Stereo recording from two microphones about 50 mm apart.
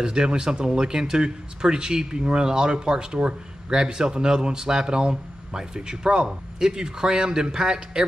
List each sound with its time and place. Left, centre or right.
0.0 s speech: centre